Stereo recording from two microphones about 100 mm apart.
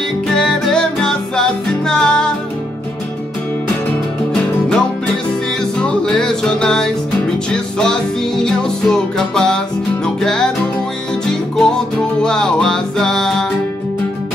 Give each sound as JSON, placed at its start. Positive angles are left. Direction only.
{"t": 0.3, "sound": "music", "side_deg": 5}
{"t": 4.3, "sound": "music", "side_deg": 5}
{"t": 11.5, "sound": "music", "side_deg": 5}